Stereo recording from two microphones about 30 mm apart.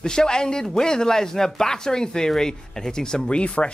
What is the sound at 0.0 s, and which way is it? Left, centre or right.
Speech, left.